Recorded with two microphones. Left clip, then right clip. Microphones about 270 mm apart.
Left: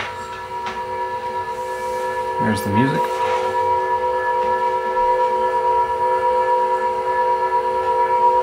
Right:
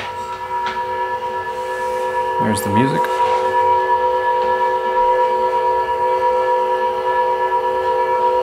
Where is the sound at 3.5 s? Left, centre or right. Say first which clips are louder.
Right 4 dB; centre.